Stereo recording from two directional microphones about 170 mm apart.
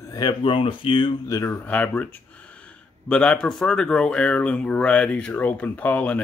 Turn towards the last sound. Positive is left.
turn(degrees=10)  # may be behind; listen again after turning